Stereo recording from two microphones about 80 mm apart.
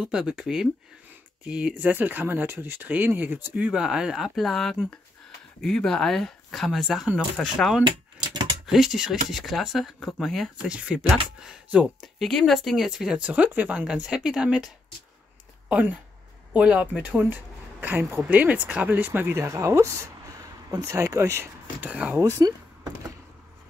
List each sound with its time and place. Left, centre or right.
0.0 s speech: centre
8.2 s a sound: right
8.6 s speech: centre
10.7 s speech: centre
12.2 s speech: centre
13.2 s speech: centre
15.7 s speech: centre
19.3 s speech: right
21.8 s speech: centre
22.4 s door: right